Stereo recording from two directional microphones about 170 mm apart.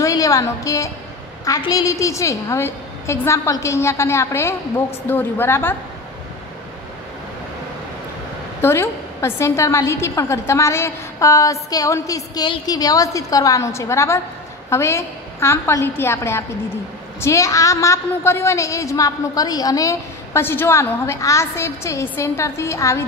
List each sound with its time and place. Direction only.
0.0 s a woman's voice: 20° left (ahead or behind)
8.5 s a woman's voice: 15° left (ahead or behind)